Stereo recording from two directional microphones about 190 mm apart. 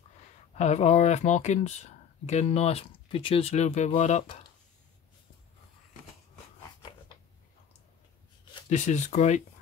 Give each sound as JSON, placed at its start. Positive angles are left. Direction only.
{"t": 0.6, "sound": "speech", "side_deg": 35}
{"t": 8.6, "sound": "speech", "side_deg": 40}